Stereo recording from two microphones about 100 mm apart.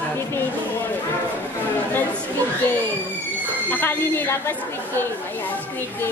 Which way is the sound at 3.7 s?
20° left (ahead or behind).